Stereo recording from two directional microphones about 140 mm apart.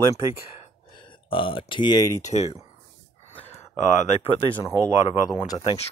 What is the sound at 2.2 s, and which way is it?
Speech, 50° left (ahead or behind).